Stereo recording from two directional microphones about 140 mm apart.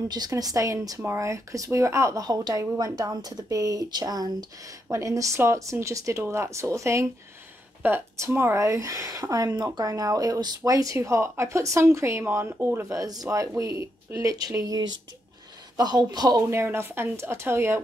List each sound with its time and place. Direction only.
0.1 s speech: 30° right (ahead or behind)